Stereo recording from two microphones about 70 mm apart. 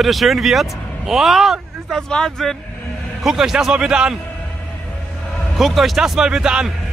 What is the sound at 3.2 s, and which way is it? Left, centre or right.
Speech, centre.